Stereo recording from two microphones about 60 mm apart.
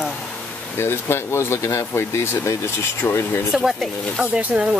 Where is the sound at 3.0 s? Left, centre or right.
Left.